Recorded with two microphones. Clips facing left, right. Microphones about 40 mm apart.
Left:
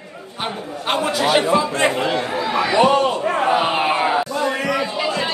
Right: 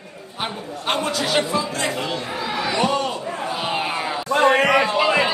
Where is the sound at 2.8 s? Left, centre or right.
Left.